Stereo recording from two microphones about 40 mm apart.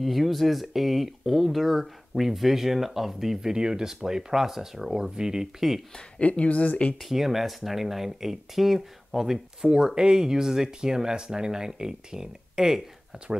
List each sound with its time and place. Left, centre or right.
0.0 s speech: centre
5.9 s speech: left
7.0 s speech: centre